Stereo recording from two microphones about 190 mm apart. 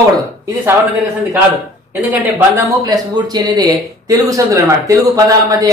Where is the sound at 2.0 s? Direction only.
10° right (ahead or behind).